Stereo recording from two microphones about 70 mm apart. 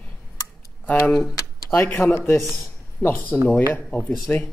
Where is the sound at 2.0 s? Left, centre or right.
Left.